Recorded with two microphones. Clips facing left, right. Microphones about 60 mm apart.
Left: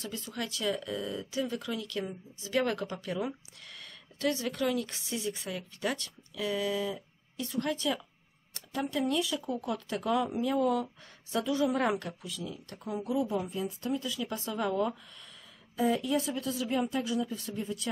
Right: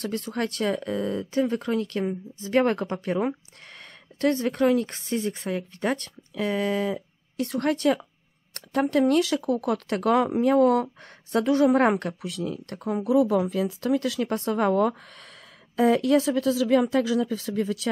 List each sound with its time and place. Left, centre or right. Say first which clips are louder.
0.0 s speech: right 9 dB; right
7.4 s speech: right 8 dB; right
15.7 s speech: right 9 dB; right